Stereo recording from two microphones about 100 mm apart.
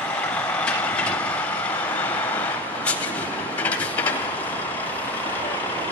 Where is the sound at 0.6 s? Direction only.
10° left (ahead or behind).